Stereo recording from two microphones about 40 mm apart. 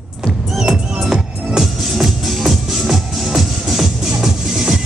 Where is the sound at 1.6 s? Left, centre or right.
Centre.